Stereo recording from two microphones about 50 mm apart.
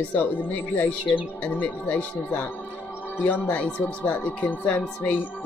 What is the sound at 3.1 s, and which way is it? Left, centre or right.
Speech, left.